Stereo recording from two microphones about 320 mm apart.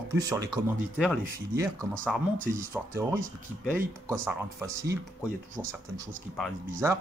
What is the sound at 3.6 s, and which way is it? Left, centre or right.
Speech, centre.